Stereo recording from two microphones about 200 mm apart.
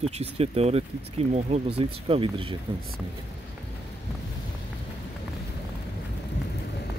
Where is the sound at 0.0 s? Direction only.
30° right (ahead or behind).